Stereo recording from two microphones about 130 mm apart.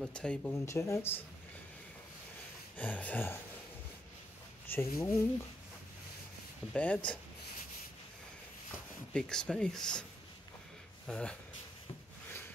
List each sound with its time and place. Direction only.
0.0 s speech: 5° left (ahead or behind)
0.7 s speech: 20° left (ahead or behind)
2.8 s speech: 10° left (ahead or behind)
4.6 s speech: 20° left (ahead or behind)
6.7 s speech: 10° left (ahead or behind)
9.1 s speech: 5° left (ahead or behind)
11.1 s speech: 5° left (ahead or behind)